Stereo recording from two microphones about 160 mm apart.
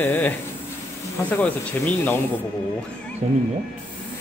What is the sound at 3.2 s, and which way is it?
Speech, 50° right (ahead or behind).